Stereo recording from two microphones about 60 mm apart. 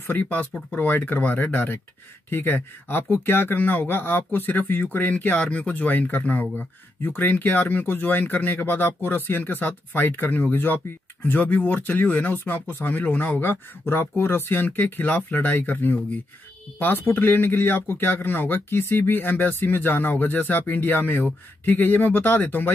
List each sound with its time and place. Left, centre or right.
0.0 s speech: left